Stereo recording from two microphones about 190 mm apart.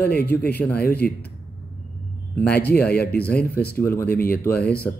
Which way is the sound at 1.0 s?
5° left (ahead or behind).